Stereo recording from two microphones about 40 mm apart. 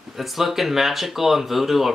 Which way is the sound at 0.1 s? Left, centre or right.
Centre.